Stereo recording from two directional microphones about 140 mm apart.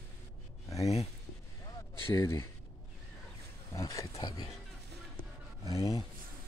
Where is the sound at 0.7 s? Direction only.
25° left (ahead or behind).